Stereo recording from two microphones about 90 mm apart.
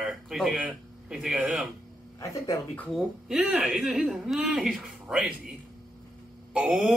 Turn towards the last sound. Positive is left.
turn(degrees=-10)  # may be behind; listen again after turning